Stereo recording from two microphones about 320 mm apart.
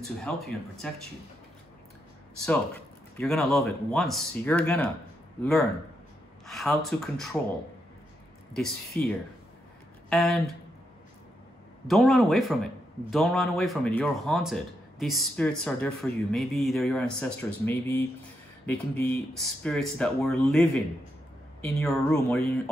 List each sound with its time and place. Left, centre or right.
0.0 s speech: centre
2.4 s speech: centre
6.4 s speech: centre
8.5 s speech: centre
11.9 s speech: centre